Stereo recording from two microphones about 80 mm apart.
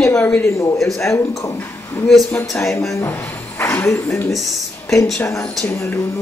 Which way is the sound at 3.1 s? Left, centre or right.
Left.